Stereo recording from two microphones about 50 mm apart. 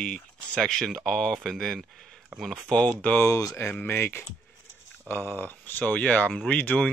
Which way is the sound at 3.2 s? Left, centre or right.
Left.